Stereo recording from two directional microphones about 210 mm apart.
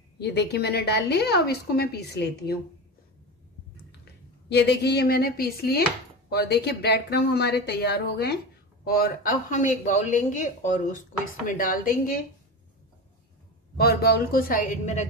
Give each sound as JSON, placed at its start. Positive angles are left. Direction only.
{"t": 0.2, "sound": "a woman's voice", "side_deg": 50}
{"t": 4.5, "sound": "a woman's voice", "side_deg": 55}
{"t": 13.7, "sound": "speech", "side_deg": 50}